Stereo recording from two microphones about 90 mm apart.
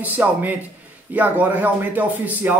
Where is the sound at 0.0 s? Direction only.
20° right (ahead or behind).